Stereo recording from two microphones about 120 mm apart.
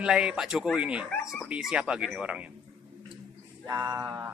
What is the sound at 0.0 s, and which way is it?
Speech, 10° right (ahead or behind).